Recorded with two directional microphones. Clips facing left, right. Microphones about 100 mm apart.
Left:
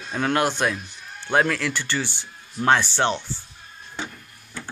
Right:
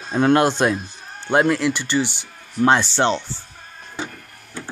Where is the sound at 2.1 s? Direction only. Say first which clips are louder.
Right 3 dB; 70° right (ahead or behind).